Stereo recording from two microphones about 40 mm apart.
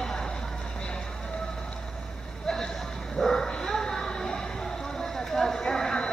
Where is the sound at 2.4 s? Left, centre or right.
Centre.